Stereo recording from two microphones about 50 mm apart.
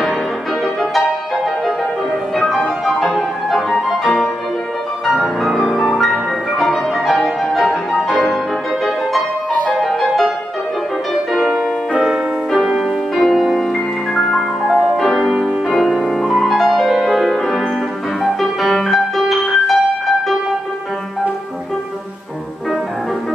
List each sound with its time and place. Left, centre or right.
0.7 s music: centre
2.9 s music: centre
9.5 s music: left
9.8 s music: centre
12.6 s music: centre
13.1 s music: centre
15.2 s music: centre
15.7 s music: centre